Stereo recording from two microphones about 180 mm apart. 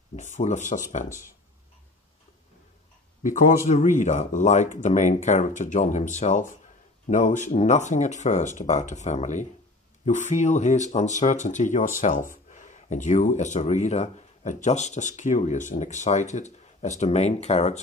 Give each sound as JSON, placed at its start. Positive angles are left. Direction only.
{"t": 0.1, "sound": "speech", "side_deg": 40}
{"t": 3.2, "sound": "speech", "side_deg": 45}